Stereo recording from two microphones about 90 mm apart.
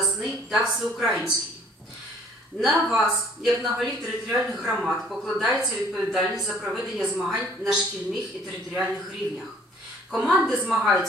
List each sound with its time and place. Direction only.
0.0 s speech: centre (ahead or behind)
2.6 s speech: centre (ahead or behind)
10.2 s speech: 5° right (ahead or behind)